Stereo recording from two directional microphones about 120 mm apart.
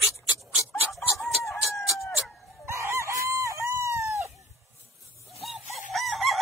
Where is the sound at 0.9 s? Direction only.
Centre (ahead or behind).